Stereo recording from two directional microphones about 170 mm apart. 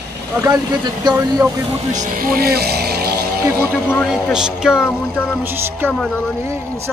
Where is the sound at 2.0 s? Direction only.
55° right (ahead or behind).